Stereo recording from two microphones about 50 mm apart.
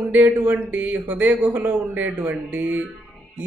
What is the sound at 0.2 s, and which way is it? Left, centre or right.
A woman's voice, right.